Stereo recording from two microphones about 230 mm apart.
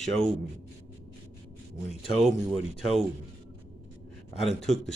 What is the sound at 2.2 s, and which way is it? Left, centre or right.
Speech, centre.